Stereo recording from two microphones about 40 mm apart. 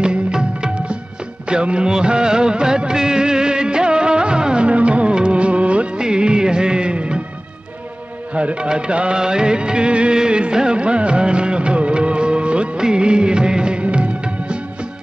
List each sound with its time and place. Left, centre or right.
0.0 s music: right
1.5 s music of bollywood: right
8.4 s music: right
12.8 s music of bollywood: right
13.8 s music: right